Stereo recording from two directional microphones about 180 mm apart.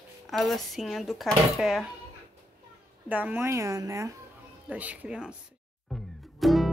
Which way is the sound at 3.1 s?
10° right (ahead or behind).